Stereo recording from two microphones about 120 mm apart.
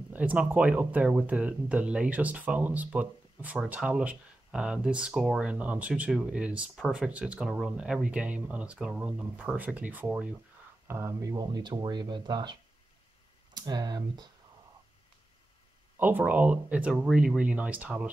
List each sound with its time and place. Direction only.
0.1 s speech: 15° right (ahead or behind)
10.9 s speech: 25° right (ahead or behind)
11.4 s speech: 40° right (ahead or behind)
16.0 s speech: 15° right (ahead or behind)